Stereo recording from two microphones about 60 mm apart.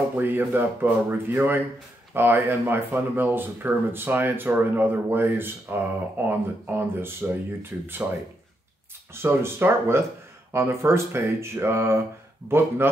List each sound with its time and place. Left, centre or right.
0.2 s speech: right
9.1 s speech: right